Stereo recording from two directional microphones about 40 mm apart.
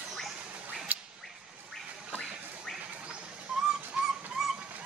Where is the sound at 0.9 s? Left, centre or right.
Right.